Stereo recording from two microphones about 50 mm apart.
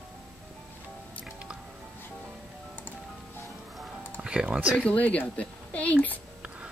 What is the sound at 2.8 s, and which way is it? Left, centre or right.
Music, left.